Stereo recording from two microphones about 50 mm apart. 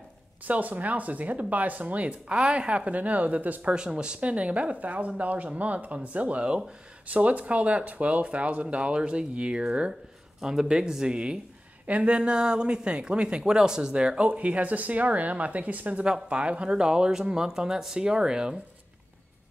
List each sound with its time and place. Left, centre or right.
0.5 s speech: right
2.0 s speech: right
3.7 s speech: centre
11.8 s speech: right